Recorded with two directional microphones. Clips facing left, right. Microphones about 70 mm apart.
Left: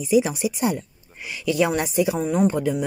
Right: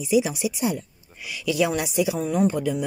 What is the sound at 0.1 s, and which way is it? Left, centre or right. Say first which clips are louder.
Speech: left 2 dB; left.